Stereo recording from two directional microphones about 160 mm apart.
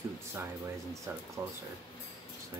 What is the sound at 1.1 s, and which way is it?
Speech, 15° right (ahead or behind).